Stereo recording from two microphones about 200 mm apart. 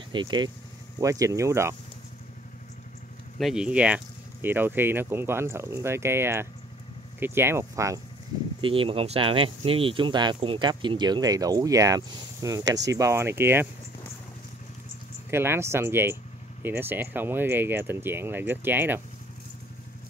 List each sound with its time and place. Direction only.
0.1 s speech: 25° right (ahead or behind)
3.3 s speech: centre (ahead or behind)
8.5 s speech: 25° right (ahead or behind)
15.3 s speech: 10° right (ahead or behind)